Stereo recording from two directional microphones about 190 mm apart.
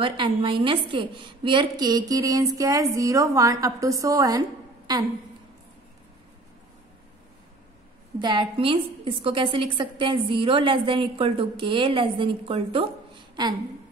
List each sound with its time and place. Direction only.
0.0 s a woman's voice: 25° right (ahead or behind)
8.2 s a woman's voice: 25° right (ahead or behind)